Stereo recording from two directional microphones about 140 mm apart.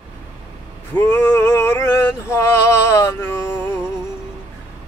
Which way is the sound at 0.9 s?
15° left (ahead or behind).